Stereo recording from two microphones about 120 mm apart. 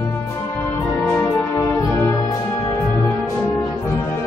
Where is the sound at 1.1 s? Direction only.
15° left (ahead or behind).